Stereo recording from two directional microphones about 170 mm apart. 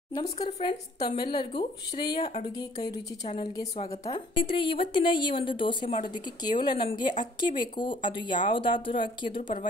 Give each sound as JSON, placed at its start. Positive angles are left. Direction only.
{"t": 0.2, "sound": "a woman's voice", "side_deg": 35}